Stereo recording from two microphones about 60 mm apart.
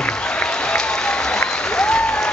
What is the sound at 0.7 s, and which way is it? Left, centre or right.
Applause, centre.